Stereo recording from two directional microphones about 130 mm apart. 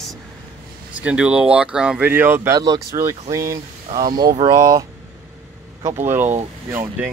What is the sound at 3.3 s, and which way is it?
Speech, 25° right (ahead or behind).